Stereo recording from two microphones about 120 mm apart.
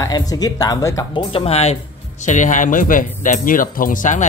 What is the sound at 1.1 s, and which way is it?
Speech, 50° left (ahead or behind).